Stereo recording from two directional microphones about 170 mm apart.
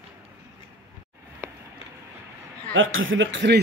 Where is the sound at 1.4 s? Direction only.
15° right (ahead or behind).